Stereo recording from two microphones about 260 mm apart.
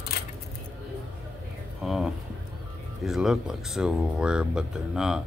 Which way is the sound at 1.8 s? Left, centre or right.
Centre.